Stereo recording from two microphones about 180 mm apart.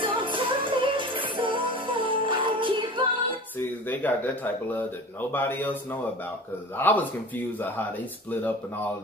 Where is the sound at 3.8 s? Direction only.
10° left (ahead or behind).